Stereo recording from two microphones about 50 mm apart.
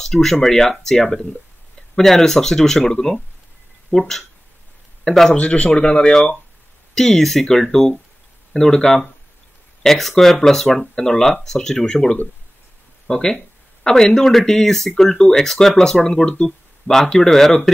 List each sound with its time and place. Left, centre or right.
0.0 s speech: centre
5.4 s speech: left; by 17.6 s centre